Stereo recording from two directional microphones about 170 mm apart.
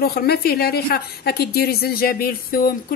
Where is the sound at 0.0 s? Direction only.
65° left (ahead or behind).